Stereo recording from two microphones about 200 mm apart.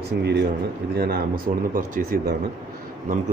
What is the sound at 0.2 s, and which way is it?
Speech, 55° right (ahead or behind).